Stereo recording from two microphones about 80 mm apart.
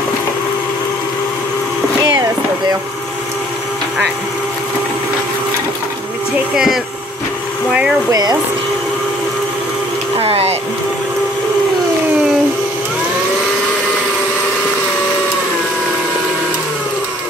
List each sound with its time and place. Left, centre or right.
6.5 s speech: centre
8.1 s speech: right